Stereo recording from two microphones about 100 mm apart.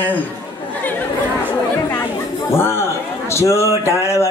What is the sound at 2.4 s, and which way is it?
Speech, 25° left (ahead or behind).